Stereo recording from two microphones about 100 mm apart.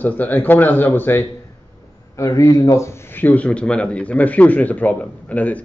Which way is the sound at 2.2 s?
30° left (ahead or behind).